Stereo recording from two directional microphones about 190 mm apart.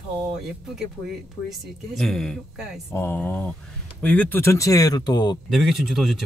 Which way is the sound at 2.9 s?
15° left (ahead or behind).